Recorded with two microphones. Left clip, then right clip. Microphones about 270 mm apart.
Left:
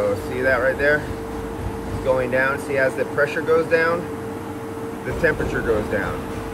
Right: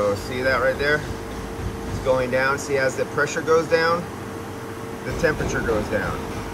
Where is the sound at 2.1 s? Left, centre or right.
Centre.